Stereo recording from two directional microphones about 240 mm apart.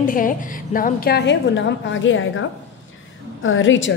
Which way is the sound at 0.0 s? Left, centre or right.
Left.